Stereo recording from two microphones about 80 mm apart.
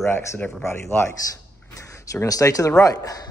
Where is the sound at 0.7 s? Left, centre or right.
Left.